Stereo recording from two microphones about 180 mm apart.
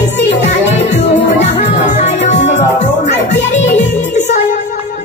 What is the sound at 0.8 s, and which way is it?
Music, 40° left (ahead or behind).